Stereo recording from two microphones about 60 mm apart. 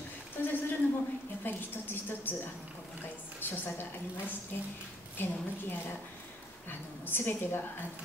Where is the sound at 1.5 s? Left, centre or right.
Left.